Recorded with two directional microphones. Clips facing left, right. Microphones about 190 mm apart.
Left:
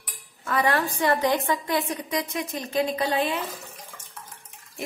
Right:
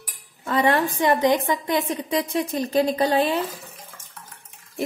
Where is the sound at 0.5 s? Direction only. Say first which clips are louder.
Right 4 dB; 20° right (ahead or behind).